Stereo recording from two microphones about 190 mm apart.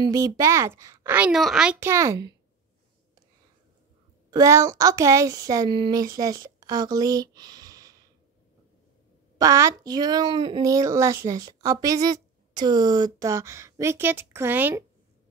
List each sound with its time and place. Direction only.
0.0 s speech: 15° right (ahead or behind)
4.3 s a sound: 15° right (ahead or behind)
9.4 s speech: 15° right (ahead or behind)